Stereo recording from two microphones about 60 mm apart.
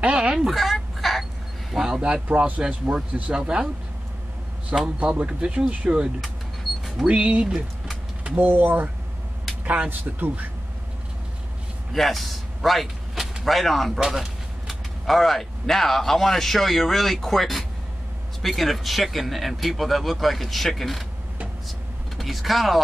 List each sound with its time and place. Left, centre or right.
0.0 s fowl: centre
0.5 s fowl: centre
1.7 s a sound: centre
2.2 s a man's voice: right
4.9 s a man's voice: right
7.1 s a man's voice: right
11.9 s speech: centre
22.1 s speech: centre